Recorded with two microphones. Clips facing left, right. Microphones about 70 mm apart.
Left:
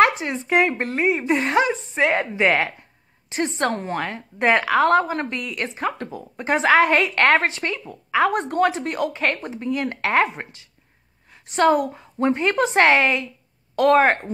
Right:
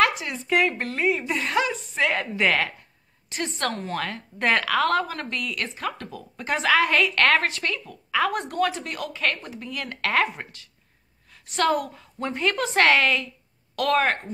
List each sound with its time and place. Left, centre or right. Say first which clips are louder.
0.0 s a woman's voice: left 5 dB; left